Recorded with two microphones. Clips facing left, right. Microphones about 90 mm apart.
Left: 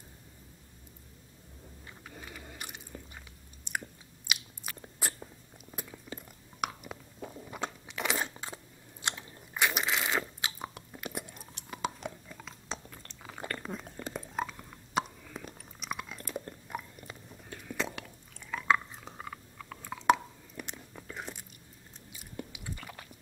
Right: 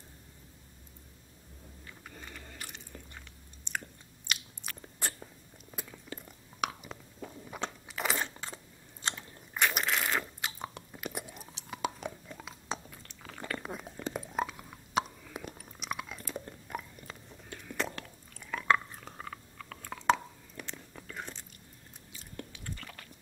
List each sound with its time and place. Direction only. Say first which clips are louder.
2.0 s a sound: left 2 dB; 5° left (ahead or behind)
3.7 s chewing: left 1 dB; 10° left (ahead or behind)
4.3 s biting: left 1 dB; 5° left (ahead or behind)
6.1 s chewing: left 2 dB; centre (ahead or behind)
9.0 s crunch: even; 5° left (ahead or behind)
13.2 s chewing: left 2 dB; 10° left (ahead or behind)
13.5 s a sound: right 2 dB; 5° right (ahead or behind)
20.6 s biting: left 1 dB; 10° left (ahead or behind)
22.1 s chewing: left 2 dB; 10° left (ahead or behind)